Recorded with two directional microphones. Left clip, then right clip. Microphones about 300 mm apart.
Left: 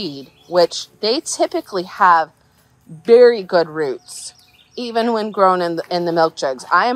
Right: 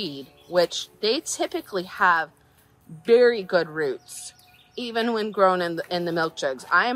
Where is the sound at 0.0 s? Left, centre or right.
Centre.